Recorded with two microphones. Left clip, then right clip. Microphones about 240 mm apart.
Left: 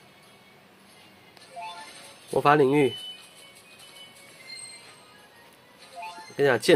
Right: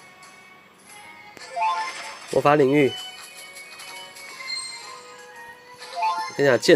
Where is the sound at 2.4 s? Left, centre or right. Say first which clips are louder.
Right 2 dB; centre.